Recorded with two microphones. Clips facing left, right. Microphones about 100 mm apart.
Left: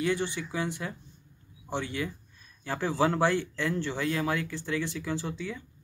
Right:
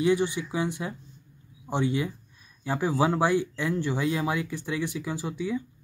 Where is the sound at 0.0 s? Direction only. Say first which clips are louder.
Right 5 dB; 15° right (ahead or behind).